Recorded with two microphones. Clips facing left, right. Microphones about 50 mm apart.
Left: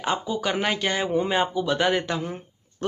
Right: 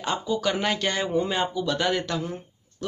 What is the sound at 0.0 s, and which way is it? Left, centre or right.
A man's voice, centre.